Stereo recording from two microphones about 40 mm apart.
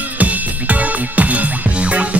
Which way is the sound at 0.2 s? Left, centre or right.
Right.